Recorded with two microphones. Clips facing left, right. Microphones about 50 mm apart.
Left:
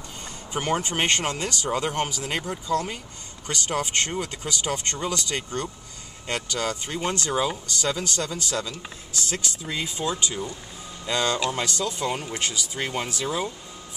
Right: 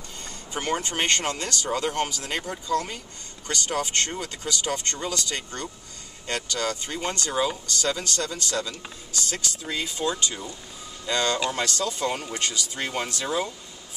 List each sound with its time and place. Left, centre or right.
0.6 s speech: centre
0.8 s speech: centre
11.3 s speech: centre
11.6 s speech: centre